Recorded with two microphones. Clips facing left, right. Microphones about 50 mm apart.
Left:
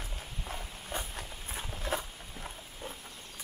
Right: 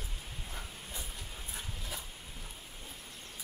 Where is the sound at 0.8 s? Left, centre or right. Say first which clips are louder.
Left 6 dB; left.